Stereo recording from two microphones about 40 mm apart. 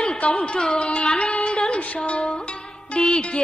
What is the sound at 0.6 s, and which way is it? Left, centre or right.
Music, left.